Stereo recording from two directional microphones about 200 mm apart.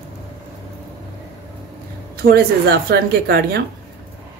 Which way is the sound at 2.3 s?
50° right (ahead or behind).